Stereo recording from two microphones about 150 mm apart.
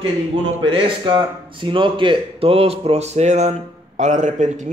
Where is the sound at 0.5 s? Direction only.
35° right (ahead or behind).